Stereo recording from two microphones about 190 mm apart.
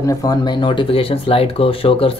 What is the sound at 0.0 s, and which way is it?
Speech, 20° left (ahead or behind).